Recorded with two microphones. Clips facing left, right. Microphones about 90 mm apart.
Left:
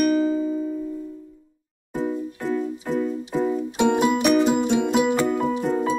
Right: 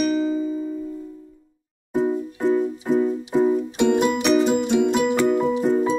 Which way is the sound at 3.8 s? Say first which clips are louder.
Left 2 dB; 5° left (ahead or behind).